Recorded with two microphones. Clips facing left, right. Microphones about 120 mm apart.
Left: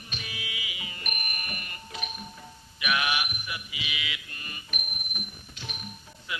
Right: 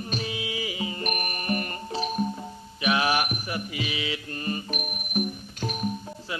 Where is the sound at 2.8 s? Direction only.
35° right (ahead or behind).